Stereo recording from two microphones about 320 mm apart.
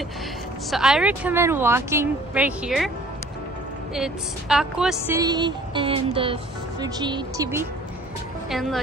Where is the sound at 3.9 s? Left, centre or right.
Centre.